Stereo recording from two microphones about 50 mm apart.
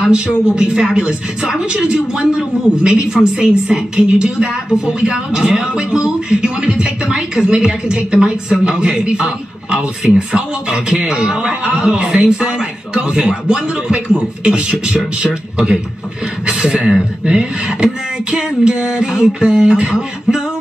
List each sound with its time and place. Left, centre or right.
0.0 s a woman's voice: centre